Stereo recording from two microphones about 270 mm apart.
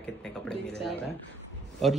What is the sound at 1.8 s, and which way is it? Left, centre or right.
Speech, centre.